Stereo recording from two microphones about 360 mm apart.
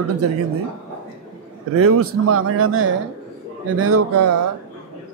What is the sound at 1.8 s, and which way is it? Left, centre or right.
Speech, right.